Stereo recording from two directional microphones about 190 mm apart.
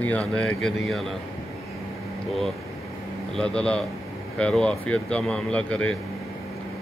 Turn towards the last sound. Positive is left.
turn(degrees=5)  # may be behind; listen again after turning